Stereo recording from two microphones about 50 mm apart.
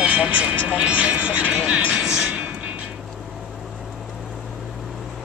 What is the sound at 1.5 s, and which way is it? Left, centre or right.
Speech, centre.